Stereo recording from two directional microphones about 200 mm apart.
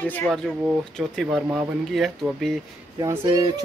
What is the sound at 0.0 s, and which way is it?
Speech, 10° left (ahead or behind).